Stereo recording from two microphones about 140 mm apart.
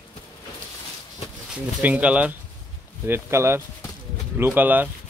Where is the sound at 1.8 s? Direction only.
10° right (ahead or behind).